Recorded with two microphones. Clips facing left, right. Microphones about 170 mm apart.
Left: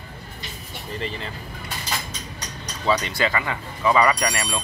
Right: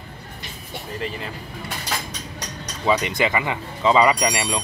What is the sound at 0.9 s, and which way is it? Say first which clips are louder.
Speech: even; 5° right (ahead or behind).